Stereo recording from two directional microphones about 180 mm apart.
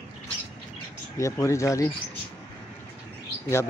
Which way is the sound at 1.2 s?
15° left (ahead or behind).